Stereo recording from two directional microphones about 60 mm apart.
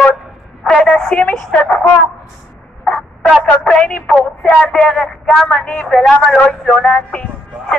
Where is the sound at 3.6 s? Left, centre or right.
Centre.